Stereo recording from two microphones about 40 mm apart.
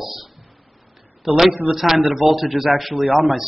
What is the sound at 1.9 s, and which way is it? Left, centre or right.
Speech, right.